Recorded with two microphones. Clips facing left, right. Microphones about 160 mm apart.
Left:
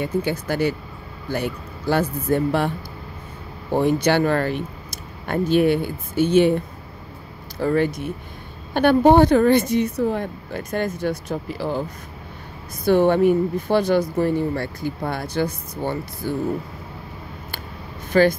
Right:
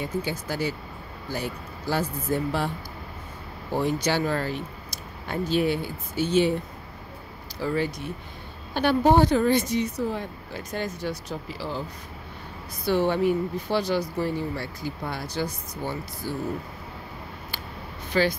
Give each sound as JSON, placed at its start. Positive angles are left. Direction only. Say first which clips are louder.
{"t": 0.0, "sound": "speech", "louder": "left 6 dB", "side_deg": 60}
{"t": 3.7, "sound": "speech", "louder": "left 7 dB", "side_deg": 60}
{"t": 7.6, "sound": "speech", "louder": "left 7 dB", "side_deg": 55}
{"t": 12.8, "sound": "speech", "louder": "left 7 dB", "side_deg": 50}
{"t": 18.1, "sound": "speech", "louder": "left 7 dB", "side_deg": 50}